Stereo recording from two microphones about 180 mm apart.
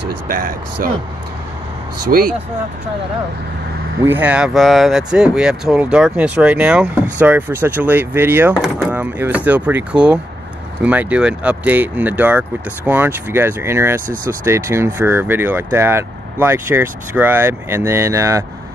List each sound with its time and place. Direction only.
0.3 s speech: 50° right (ahead or behind)
2.0 s speech: 55° right (ahead or behind)
4.0 s speech: 10° right (ahead or behind)